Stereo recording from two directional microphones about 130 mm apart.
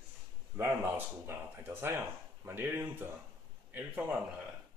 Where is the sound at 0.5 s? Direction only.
15° right (ahead or behind).